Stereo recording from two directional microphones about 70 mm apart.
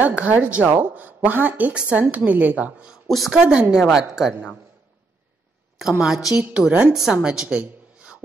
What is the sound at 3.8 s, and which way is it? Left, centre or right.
Speech, centre.